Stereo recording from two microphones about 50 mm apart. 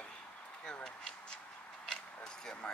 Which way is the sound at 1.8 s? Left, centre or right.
Centre.